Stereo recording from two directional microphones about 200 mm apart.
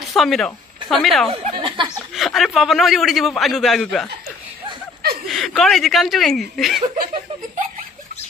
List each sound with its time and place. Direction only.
0.1 s speech: centre (ahead or behind)
1.3 s snicker: 25° right (ahead or behind)
2.1 s a man's voice: centre (ahead or behind)
5.3 s a man's voice: centre (ahead or behind)